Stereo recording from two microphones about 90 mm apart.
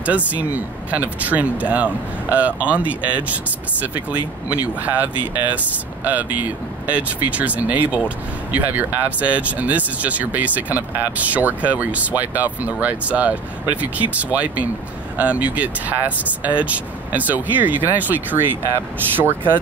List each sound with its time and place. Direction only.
0.0 s speech: 15° right (ahead or behind)